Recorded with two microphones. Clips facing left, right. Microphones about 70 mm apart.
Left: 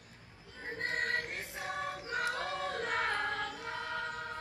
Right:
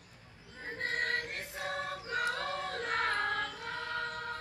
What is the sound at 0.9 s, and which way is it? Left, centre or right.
Choir, centre.